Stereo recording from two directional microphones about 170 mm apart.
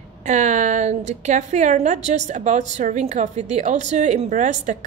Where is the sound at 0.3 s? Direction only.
45° right (ahead or behind).